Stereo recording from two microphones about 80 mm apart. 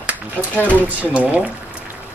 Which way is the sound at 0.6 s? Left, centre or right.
Centre.